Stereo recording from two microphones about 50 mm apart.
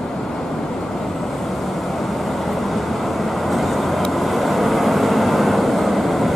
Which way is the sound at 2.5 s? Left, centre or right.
Centre.